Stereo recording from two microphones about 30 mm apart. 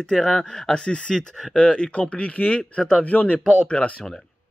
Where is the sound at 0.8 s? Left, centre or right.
Left.